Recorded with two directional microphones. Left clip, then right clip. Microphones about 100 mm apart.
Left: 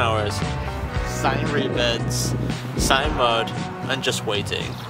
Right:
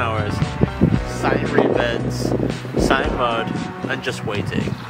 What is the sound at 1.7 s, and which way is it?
Speech, 15° left (ahead or behind).